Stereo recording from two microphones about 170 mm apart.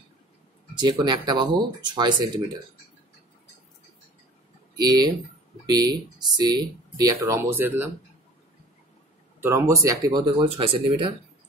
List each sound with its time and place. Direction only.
0.7 s speech: 25° right (ahead or behind)
4.7 s speech: 25° right (ahead or behind)
9.4 s speech: 15° right (ahead or behind); by 11.1 s 30° right (ahead or behind)